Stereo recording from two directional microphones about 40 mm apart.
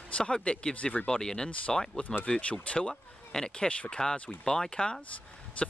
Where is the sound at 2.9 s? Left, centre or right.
Centre.